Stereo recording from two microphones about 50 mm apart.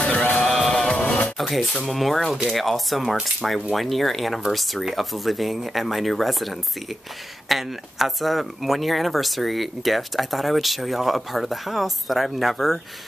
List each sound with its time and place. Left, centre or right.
0.0 s music: left
1.4 s speech: centre